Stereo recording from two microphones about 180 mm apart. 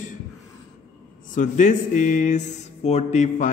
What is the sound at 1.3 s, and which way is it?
Speech, 45° left (ahead or behind).